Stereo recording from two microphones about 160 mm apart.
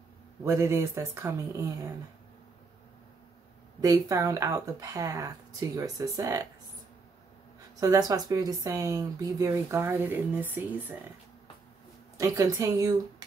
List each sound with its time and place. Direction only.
0.4 s speech: 15° right (ahead or behind)
3.8 s speech: 20° right (ahead or behind)
7.8 s speech: 20° right (ahead or behind)
12.2 s speech: 20° right (ahead or behind)